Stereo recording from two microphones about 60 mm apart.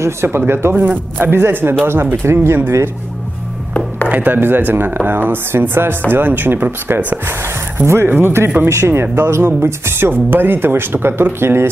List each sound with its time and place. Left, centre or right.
0.0 s speech: right
0.7 s speech: right
4.1 s speech: right